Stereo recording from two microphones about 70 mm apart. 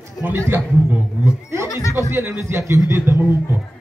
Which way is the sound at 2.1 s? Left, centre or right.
Right.